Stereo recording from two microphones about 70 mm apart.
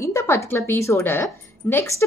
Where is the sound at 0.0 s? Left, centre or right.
Left.